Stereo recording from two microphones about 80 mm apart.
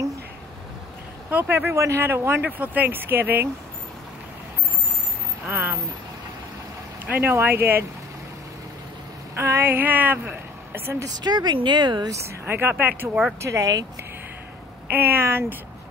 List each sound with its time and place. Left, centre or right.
1.3 s speech: right
5.5 s speech: right
7.1 s speech: right
9.4 s speech: right
11.1 s speech: right
12.4 s speech: right
13.4 s speech: right
14.9 s speech: right